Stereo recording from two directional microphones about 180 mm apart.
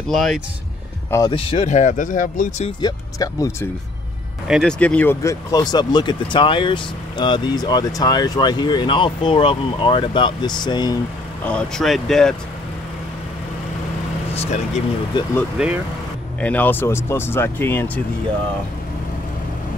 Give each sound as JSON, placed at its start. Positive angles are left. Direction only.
{"t": 0.1, "sound": "speech", "side_deg": 0}
{"t": 1.3, "sound": "speech", "side_deg": 35}
{"t": 2.8, "sound": "speech", "side_deg": 20}
{"t": 4.5, "sound": "speech", "side_deg": 0}
{"t": 11.4, "sound": "speech", "side_deg": 5}
{"t": 14.3, "sound": "vehicle", "side_deg": 35}
{"t": 15.2, "sound": "speech", "side_deg": 25}
{"t": 15.5, "sound": "speech", "side_deg": -5}
{"t": 16.3, "sound": "speech", "side_deg": 10}